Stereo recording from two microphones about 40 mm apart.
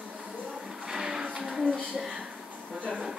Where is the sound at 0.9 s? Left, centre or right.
Centre.